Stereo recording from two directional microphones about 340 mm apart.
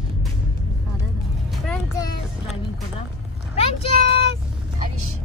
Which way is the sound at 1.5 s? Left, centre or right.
Centre.